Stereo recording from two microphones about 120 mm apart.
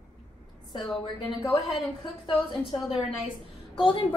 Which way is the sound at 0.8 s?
Centre (ahead or behind).